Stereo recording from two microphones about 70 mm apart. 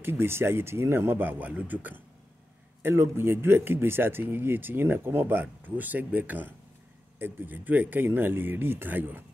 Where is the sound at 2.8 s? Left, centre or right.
Right.